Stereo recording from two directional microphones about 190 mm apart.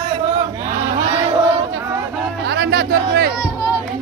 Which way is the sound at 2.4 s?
60° right (ahead or behind).